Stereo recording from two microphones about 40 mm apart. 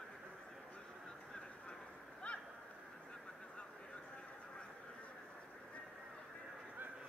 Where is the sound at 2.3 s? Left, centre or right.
Left.